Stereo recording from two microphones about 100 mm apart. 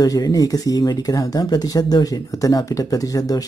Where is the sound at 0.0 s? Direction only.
40° left (ahead or behind).